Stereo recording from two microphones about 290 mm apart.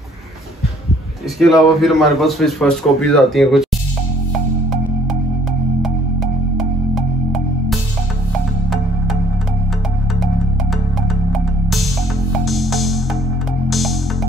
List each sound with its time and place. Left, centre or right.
1.4 s a man's voice: centre
6.5 s music: centre
8.6 s music: centre
10.2 s music: centre